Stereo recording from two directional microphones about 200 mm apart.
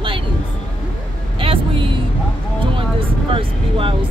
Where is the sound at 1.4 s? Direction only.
25° right (ahead or behind).